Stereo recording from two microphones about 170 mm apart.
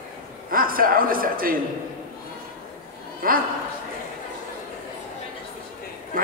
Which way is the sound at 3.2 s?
55° right (ahead or behind).